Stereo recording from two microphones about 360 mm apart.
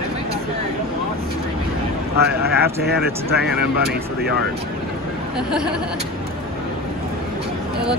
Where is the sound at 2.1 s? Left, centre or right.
Right.